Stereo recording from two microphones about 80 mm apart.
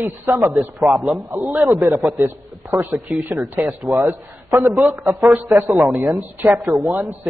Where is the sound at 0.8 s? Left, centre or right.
Centre.